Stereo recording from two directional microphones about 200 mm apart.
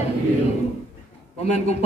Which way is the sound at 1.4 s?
35° left (ahead or behind).